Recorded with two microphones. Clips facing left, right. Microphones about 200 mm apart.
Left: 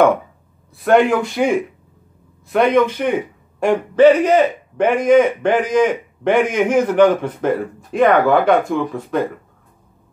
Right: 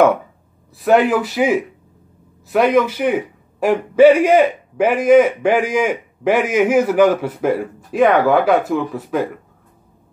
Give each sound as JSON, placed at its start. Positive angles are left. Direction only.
{"t": 0.7, "sound": "a man's voice", "side_deg": -5}